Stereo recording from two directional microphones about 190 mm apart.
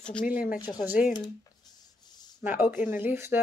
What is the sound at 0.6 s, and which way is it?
Speech, 20° left (ahead or behind).